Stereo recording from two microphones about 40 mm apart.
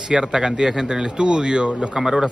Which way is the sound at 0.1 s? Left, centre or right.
Right.